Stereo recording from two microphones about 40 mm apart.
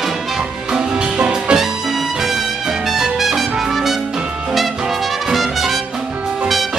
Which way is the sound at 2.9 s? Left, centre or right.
Centre.